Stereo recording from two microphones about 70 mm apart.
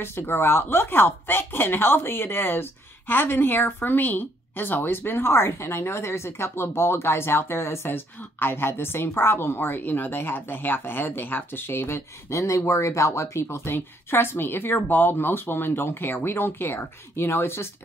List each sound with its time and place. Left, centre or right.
0.0 s speech: left